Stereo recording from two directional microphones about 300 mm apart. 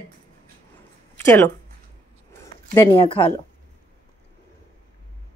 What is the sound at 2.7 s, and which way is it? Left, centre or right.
Speech, centre.